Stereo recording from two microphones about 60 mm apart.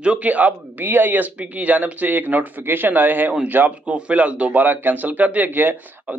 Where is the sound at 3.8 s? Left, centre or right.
Centre.